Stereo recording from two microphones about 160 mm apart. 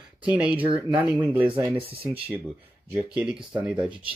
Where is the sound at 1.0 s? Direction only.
10° right (ahead or behind).